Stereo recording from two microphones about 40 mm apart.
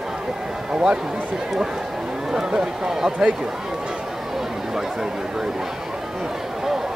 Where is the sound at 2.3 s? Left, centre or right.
Centre.